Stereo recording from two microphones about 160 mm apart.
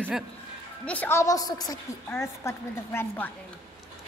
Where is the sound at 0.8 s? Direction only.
10° left (ahead or behind).